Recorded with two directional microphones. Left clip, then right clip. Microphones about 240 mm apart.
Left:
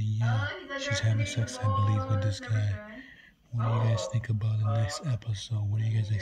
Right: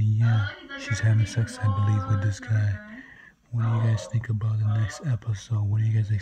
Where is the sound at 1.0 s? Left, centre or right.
Centre.